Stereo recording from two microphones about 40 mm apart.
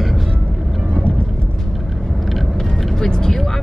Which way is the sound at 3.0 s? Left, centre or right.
Centre.